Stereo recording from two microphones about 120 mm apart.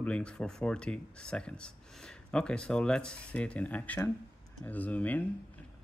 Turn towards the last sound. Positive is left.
turn(degrees=10)  # may be behind; listen again after turning